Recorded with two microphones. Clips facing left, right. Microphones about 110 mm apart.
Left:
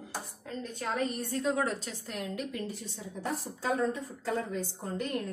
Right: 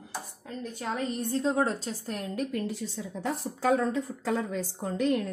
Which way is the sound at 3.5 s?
90° right.